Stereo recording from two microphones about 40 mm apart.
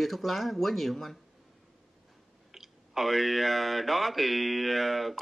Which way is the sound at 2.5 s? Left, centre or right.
Centre.